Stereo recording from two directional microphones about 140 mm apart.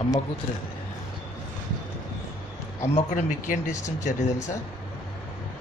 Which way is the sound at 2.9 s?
70° left (ahead or behind).